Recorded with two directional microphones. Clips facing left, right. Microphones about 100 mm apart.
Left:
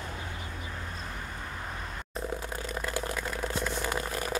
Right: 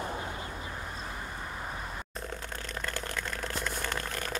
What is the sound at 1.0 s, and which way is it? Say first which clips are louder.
Vehicle: even; 10° right (ahead or behind).